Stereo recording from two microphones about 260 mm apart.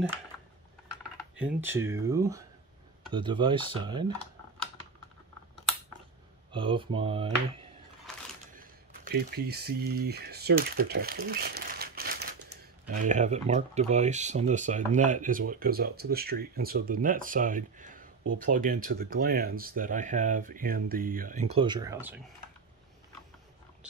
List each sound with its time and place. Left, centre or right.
1.3 s speech: centre
6.5 s speech: centre
8.5 s speech: right; by 22.3 s centre